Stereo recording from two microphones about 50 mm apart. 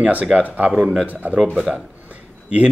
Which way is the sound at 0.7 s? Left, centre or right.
Centre.